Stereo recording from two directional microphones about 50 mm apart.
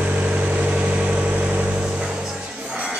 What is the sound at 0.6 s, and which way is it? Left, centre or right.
Vehicle, right.